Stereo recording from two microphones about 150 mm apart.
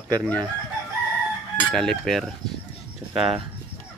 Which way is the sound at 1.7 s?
5° left (ahead or behind).